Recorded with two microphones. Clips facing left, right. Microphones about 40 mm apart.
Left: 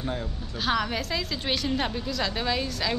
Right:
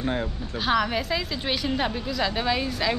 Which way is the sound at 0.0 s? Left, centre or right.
Right.